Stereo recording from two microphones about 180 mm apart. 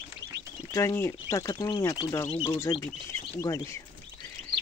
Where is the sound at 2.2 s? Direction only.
30° left (ahead or behind).